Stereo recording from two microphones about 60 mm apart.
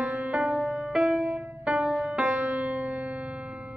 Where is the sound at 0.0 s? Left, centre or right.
Centre.